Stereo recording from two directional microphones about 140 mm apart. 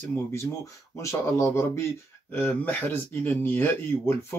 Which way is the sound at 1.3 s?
20° left (ahead or behind).